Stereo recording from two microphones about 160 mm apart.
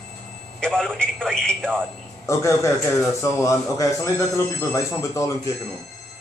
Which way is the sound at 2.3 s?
20° left (ahead or behind).